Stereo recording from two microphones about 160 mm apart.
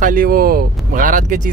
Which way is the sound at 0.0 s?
60° right (ahead or behind).